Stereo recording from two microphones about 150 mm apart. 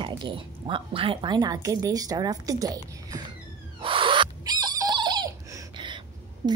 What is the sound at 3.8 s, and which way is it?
Rodents, 35° right (ahead or behind).